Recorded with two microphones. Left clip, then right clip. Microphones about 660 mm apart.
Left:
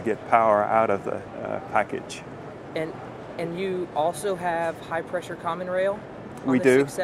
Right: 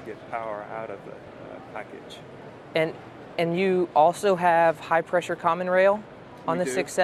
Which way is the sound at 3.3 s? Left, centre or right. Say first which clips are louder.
Right 6 dB; right.